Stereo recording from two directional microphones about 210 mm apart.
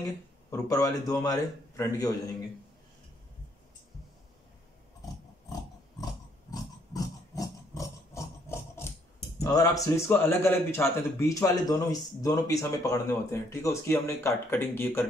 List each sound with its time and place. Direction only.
0.5 s a man's voice: 15° left (ahead or behind)
6.5 s a sound: 15° left (ahead or behind)
9.4 s a man's voice: 15° left (ahead or behind)